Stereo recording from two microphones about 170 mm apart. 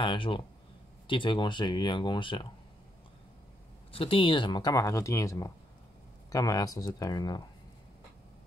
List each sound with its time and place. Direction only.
0.0 s speech: 30° left (ahead or behind)
3.9 s speech: 30° left (ahead or behind)